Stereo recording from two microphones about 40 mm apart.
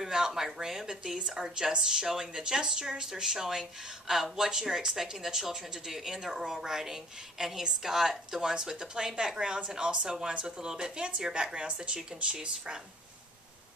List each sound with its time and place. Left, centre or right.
0.0 s speech: centre